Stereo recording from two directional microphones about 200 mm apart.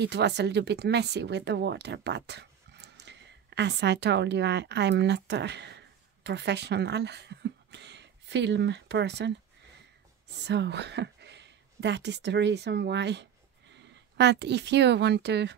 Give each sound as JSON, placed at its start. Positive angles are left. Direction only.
{"t": 0.0, "sound": "speech", "side_deg": -60}
{"t": 10.4, "sound": "speech", "side_deg": -60}